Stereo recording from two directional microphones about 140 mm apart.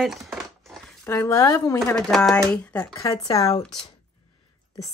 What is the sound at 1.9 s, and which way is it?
Speech, centre (ahead or behind).